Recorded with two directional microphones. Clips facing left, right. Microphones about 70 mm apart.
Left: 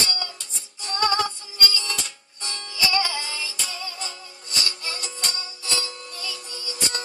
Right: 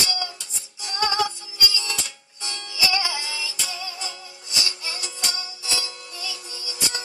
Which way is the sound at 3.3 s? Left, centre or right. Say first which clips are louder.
Right 1 dB; left.